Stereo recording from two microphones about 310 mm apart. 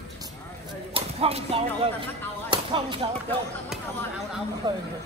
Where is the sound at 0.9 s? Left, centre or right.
Centre.